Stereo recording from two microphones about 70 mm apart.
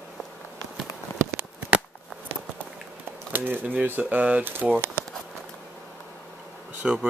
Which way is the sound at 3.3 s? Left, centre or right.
Right.